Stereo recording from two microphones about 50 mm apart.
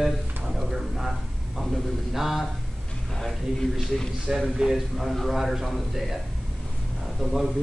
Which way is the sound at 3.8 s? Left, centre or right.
Centre.